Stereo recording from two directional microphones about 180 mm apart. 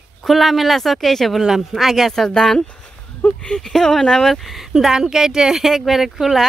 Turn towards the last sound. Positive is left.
turn(degrees=0)  # may be behind; listen again after turning